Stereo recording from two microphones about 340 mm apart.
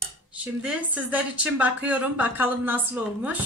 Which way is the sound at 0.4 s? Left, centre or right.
Centre.